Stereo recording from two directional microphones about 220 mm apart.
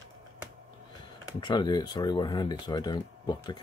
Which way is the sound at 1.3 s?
20° left (ahead or behind).